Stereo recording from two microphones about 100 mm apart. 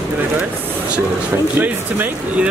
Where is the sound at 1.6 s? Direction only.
20° right (ahead or behind).